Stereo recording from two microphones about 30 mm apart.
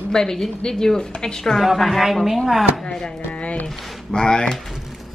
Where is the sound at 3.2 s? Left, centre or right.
Left.